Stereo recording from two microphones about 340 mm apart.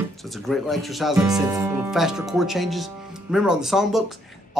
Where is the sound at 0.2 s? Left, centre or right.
Centre.